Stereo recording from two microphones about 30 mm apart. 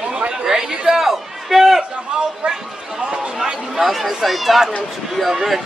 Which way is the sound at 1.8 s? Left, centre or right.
Right.